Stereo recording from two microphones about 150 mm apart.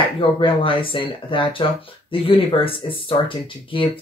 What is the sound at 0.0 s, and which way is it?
Speech, 35° left (ahead or behind).